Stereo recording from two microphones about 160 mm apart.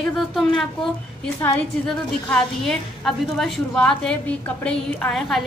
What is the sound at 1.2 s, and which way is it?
A woman's voice, 10° left (ahead or behind).